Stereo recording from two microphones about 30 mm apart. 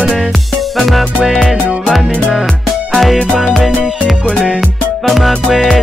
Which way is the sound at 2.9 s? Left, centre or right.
Centre.